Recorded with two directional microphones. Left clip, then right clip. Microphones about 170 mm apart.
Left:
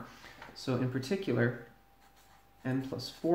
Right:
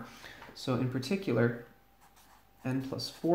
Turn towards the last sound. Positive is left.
turn(degrees=-40)  # may be behind; listen again after turning